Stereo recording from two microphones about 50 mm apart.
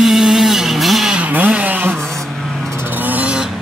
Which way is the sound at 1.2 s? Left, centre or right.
Right.